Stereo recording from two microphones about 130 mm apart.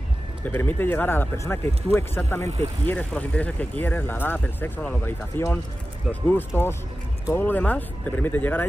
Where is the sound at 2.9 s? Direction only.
10° left (ahead or behind).